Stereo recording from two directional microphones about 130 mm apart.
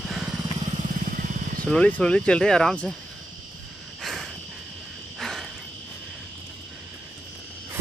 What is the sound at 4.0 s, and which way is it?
Cricket, centre (ahead or behind).